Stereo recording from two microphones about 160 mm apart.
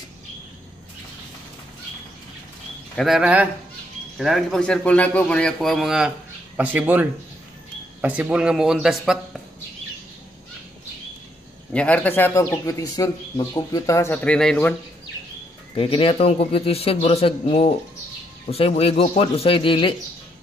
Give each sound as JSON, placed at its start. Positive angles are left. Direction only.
{"t": 3.0, "sound": "a man's voice", "side_deg": -5}
{"t": 11.7, "sound": "speech", "side_deg": 10}
{"t": 15.7, "sound": "speech", "side_deg": 35}